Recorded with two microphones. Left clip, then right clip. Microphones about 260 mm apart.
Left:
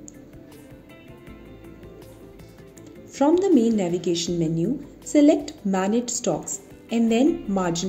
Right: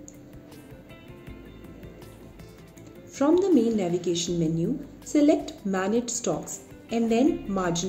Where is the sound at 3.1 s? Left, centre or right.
Left.